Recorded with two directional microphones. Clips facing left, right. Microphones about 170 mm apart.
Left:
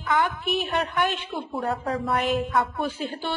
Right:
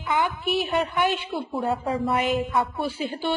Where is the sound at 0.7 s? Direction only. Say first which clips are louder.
Right 2 dB; 5° right (ahead or behind).